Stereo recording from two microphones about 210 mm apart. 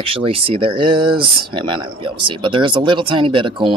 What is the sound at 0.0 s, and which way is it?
Speech, 25° right (ahead or behind).